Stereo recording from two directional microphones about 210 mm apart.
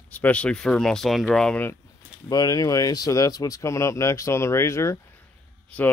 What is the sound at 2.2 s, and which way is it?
Speech, 20° left (ahead or behind).